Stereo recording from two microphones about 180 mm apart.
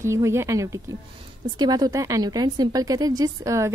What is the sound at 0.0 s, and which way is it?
A woman's voice, 15° right (ahead or behind).